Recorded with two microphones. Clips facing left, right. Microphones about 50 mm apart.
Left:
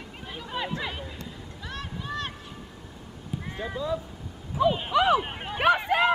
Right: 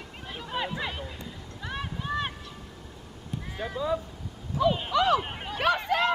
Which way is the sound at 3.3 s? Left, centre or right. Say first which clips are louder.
Left 2 dB; centre.